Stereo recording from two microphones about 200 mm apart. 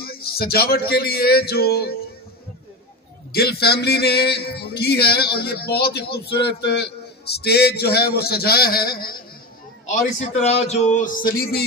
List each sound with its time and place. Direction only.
0.0 s speech: 50° left (ahead or behind)
3.3 s speech: 50° left (ahead or behind)
9.8 s a man's voice: 30° left (ahead or behind); by 11.6 s 50° left (ahead or behind)